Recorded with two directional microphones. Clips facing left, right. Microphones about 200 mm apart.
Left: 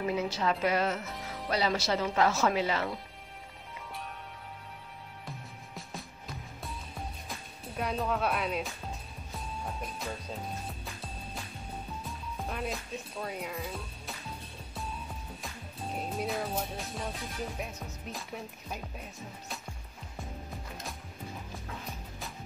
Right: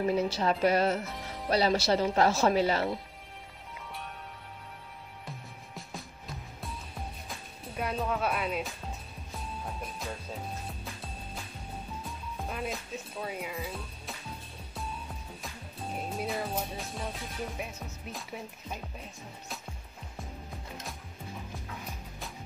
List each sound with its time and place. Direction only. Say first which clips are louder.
0.1 s speech: right 3 dB; 35° right (ahead or behind)
7.2 s speech: even; centre (ahead or behind)
9.3 s music: even; centre (ahead or behind)
12.0 s speech: even; centre (ahead or behind)
14.7 s music: right 1 dB; centre (ahead or behind)
18.1 s speech: even; centre (ahead or behind)